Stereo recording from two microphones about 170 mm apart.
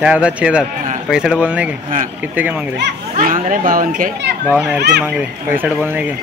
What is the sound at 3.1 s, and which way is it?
Speech, 50° right (ahead or behind).